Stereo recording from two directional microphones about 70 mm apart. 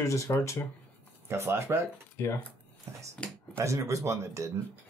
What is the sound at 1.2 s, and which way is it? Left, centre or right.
Speech, right.